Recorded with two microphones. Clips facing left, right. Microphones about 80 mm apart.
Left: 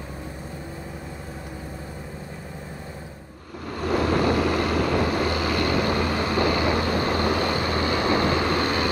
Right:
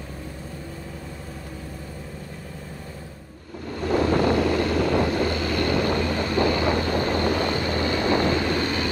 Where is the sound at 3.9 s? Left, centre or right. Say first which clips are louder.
Right 1 dB; right.